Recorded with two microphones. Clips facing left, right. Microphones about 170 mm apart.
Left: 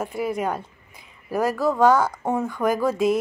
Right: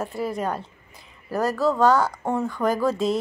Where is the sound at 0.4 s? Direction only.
5° left (ahead or behind).